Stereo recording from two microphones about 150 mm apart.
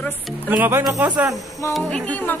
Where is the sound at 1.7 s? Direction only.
5° left (ahead or behind).